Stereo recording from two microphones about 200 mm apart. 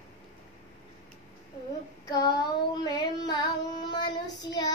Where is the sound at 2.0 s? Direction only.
20° left (ahead or behind).